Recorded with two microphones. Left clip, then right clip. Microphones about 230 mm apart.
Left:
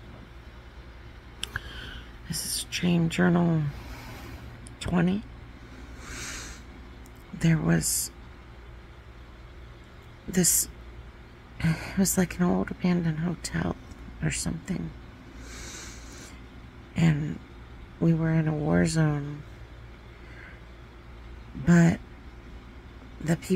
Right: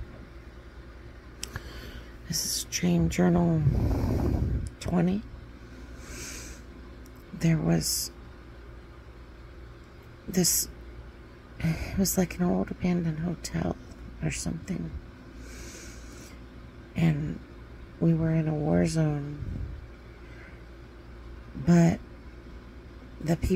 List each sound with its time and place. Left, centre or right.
1.4 s a sound: centre
3.1 s speech: centre
6.0 s a sound: centre
7.3 s speech: centre
7.8 s speech: left
10.3 s speech: centre
15.5 s boat: centre
16.9 s speech: centre
21.6 s speech: centre
23.2 s speech: centre